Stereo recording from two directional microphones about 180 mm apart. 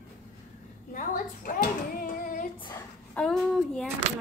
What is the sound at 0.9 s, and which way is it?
A child's voice, 50° left (ahead or behind).